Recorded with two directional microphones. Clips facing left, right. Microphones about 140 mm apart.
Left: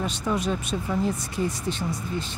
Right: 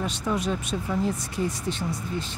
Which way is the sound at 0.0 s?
30° left (ahead or behind).